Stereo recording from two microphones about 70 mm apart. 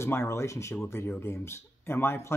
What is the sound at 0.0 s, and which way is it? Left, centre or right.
Speech, left.